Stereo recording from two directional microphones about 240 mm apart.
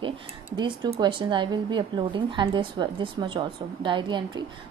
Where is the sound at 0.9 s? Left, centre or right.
Right.